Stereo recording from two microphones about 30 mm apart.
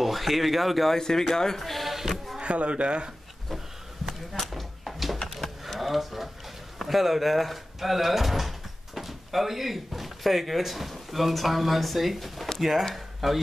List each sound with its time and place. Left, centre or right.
0.0 s speech: centre
0.9 s speech: centre
1.6 s speech: centre
2.0 s a sound: centre
2.4 s speech: right
4.3 s a sound: centre
6.8 s speech: centre